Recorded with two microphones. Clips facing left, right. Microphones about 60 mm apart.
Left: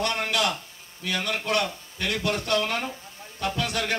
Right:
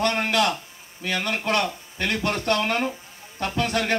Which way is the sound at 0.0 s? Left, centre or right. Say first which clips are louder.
Right 4 dB; right.